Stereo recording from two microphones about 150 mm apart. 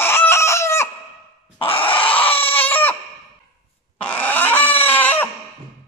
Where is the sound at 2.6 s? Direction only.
10° left (ahead or behind).